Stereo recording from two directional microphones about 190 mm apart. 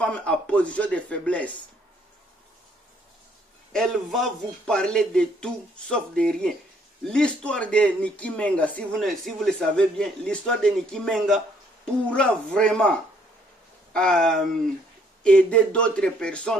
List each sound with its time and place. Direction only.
0.0 s speech: 5° left (ahead or behind)
3.7 s speech: centre (ahead or behind)
13.9 s speech: 5° left (ahead or behind)